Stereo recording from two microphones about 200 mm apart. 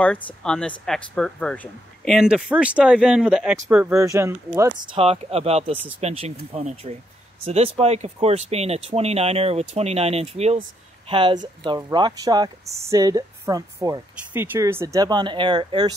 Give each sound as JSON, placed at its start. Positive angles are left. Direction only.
{"t": 0.0, "sound": "speech", "side_deg": 5}
{"t": 4.9, "sound": "speech", "side_deg": -30}